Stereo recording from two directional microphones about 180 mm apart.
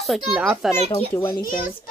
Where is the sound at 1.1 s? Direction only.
10° left (ahead or behind).